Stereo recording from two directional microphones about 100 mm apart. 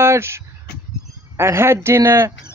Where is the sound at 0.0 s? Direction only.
25° right (ahead or behind).